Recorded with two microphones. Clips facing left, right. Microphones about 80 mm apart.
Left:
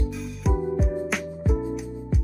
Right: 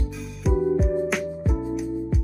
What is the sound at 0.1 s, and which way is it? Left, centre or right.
Music, centre.